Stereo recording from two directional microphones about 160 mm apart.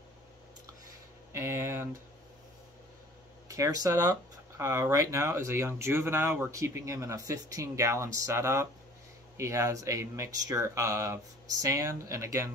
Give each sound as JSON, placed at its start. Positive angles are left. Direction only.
{"t": 1.3, "sound": "speech", "side_deg": -15}
{"t": 3.4, "sound": "speech", "side_deg": -20}